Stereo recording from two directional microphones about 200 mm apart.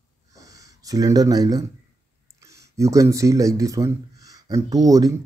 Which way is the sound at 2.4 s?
15° right (ahead or behind).